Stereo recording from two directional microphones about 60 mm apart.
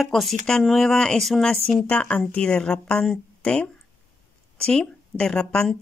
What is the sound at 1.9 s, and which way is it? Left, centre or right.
Speech, centre.